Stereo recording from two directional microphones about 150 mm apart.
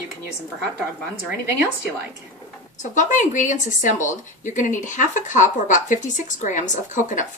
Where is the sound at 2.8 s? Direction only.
55° left (ahead or behind).